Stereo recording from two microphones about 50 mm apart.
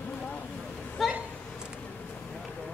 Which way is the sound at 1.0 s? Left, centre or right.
Centre.